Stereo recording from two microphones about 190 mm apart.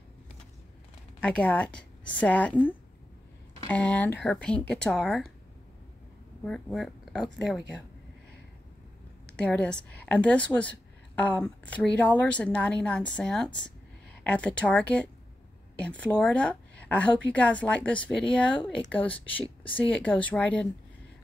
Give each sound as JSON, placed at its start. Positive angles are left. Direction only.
{"t": 1.2, "sound": "speech", "side_deg": 5}
{"t": 6.4, "sound": "speech", "side_deg": 0}
{"t": 9.2, "sound": "a woman's voice", "side_deg": 5}